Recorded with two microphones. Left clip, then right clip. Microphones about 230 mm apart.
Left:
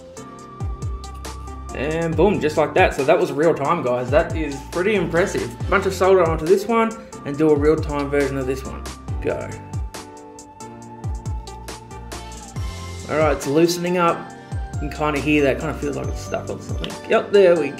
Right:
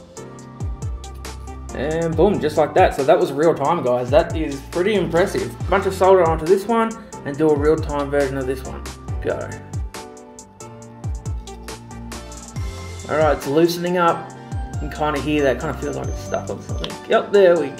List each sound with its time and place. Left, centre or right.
1.7 s speech: centre
13.1 s speech: centre